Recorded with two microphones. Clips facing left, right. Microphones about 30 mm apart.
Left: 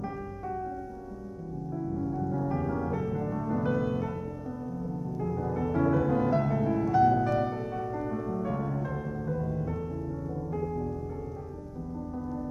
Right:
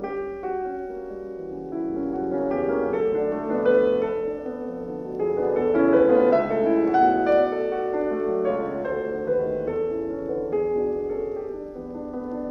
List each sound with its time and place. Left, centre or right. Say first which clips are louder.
1.8 s music: right 6 dB; right
5.2 s music: right 11 dB; right